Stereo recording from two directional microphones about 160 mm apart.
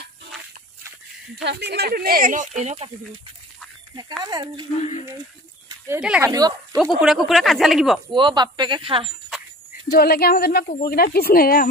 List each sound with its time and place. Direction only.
1.3 s speech: 90° right; by 2.9 s 45° right (ahead or behind)
4.2 s speech: 25° right (ahead or behind)
5.9 s speech: 5° right (ahead or behind)
6.3 s speech: 25° right (ahead or behind)
7.0 s speech: centre (ahead or behind)
8.1 s speech: 30° right (ahead or behind)
9.9 s a woman's voice: 75° left (ahead or behind)